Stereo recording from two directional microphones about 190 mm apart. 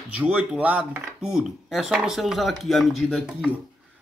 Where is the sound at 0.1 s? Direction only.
5° right (ahead or behind).